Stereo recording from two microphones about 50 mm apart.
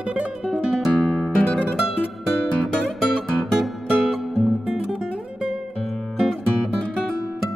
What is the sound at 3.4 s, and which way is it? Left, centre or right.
Music, centre.